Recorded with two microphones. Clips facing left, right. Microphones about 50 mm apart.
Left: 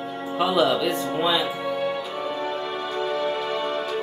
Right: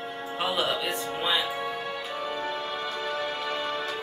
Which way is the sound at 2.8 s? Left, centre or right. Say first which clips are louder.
Left 8 dB; left.